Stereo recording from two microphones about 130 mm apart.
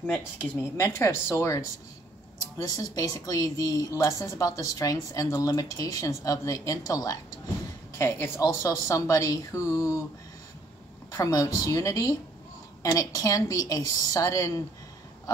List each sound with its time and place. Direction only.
0.0 s a woman's voice: 10° left (ahead or behind)
2.7 s a woman's voice: 30° left (ahead or behind)
11.1 s a woman's voice: 25° left (ahead or behind)